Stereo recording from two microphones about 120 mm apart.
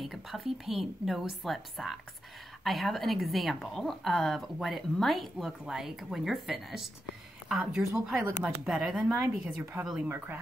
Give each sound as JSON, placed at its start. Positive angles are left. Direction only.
{"t": 0.0, "sound": "a woman's voice", "side_deg": 0}
{"t": 9.1, "sound": "speech", "side_deg": -20}